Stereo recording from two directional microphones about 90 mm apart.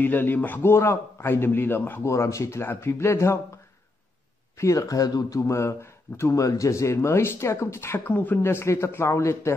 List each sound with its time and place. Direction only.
0.0 s a man's voice: 20° left (ahead or behind)
4.6 s speech: 35° left (ahead or behind); by 8.4 s 20° left (ahead or behind)
8.4 s speech: 30° left (ahead or behind)